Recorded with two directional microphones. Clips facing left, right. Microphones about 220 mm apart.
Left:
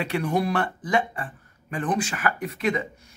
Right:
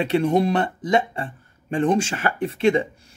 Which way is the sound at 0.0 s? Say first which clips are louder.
Right 6 dB; 25° right (ahead or behind).